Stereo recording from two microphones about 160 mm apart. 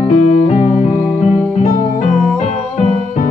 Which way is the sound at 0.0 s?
40° left (ahead or behind).